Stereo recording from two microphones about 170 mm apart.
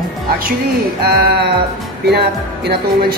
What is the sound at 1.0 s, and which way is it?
Speech, 70° right (ahead or behind).